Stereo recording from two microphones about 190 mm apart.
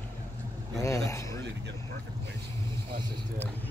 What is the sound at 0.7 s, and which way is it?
Speech, 15° left (ahead or behind).